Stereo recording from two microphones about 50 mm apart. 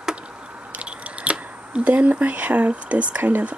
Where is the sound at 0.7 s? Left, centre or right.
Right.